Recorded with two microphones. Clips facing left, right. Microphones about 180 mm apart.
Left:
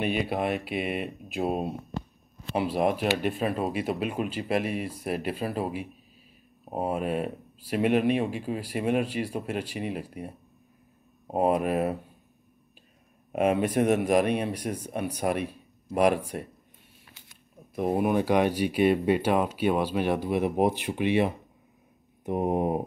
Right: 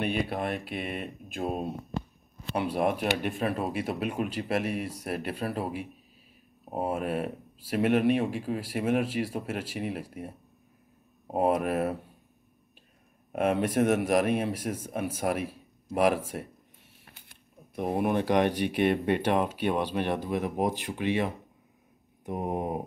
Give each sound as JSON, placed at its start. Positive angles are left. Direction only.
{"t": 0.0, "sound": "speech", "side_deg": 5}
{"t": 7.0, "sound": "speech", "side_deg": 0}
{"t": 11.3, "sound": "speech", "side_deg": 0}
{"t": 13.3, "sound": "speech", "side_deg": 0}
{"t": 17.0, "sound": "a sound", "side_deg": -55}
{"t": 17.7, "sound": "speech", "side_deg": 0}
{"t": 22.2, "sound": "mantra", "side_deg": 20}